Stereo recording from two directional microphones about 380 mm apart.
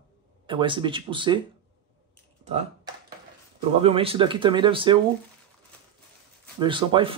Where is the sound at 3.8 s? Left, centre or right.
Centre.